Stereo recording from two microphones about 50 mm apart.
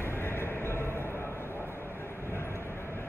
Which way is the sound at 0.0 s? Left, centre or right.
Left.